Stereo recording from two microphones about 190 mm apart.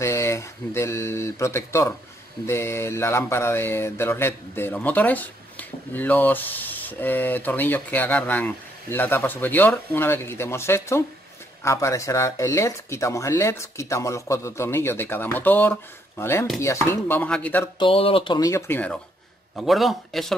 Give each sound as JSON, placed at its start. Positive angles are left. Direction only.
{"t": 0.0, "sound": "speech", "side_deg": 15}
{"t": 17.7, "sound": "speech", "side_deg": 30}
{"t": 19.5, "sound": "a man's voice", "side_deg": 0}